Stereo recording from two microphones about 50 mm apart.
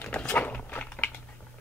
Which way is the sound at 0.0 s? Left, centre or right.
Left.